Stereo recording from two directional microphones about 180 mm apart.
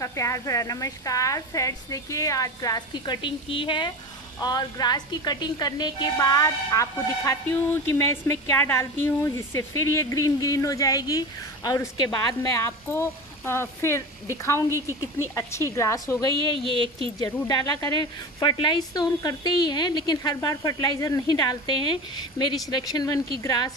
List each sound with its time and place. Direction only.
0.0 s a woman's voice: 15° left (ahead or behind)
15.3 s a woman's voice: 15° left (ahead or behind)
16.6 s speech: 30° right (ahead or behind)
17.2 s a woman's voice: 15° left (ahead or behind)